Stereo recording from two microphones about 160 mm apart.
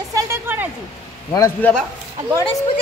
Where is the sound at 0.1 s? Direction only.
20° right (ahead or behind).